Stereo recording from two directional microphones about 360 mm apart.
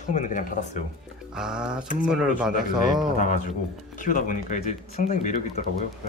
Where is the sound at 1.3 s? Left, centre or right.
Centre.